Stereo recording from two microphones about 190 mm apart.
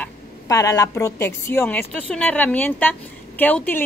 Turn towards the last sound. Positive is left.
turn(degrees=10)  # may be behind; listen again after turning